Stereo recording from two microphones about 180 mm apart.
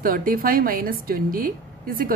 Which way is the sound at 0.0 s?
55° right (ahead or behind).